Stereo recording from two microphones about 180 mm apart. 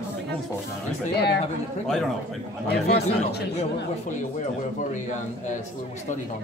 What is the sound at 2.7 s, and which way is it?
Speech, 65° left (ahead or behind).